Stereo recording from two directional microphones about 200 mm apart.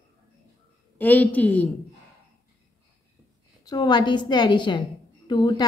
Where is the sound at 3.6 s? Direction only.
20° left (ahead or behind).